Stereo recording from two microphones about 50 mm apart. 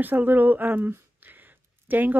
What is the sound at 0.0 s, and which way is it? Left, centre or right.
Speech, right.